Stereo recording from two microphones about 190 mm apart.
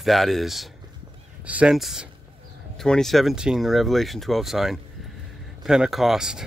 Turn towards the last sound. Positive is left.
turn(degrees=-5)  # may be behind; listen again after turning